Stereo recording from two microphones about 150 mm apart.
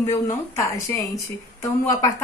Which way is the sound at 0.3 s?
20° left (ahead or behind).